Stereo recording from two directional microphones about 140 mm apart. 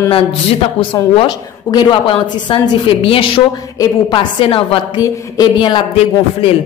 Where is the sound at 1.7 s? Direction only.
35° left (ahead or behind).